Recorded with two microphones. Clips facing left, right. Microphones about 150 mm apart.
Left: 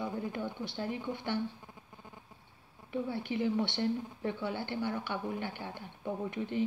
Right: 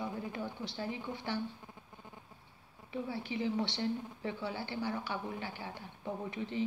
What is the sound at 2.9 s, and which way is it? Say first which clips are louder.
Speech: left 3 dB; 55° left (ahead or behind).